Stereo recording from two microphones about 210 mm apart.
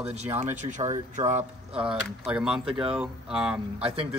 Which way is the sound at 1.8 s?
5° right (ahead or behind).